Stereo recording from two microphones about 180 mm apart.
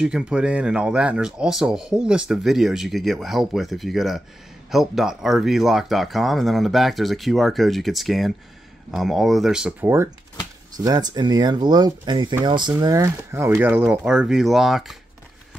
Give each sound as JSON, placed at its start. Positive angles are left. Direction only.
{"t": 0.0, "sound": "speech", "side_deg": -5}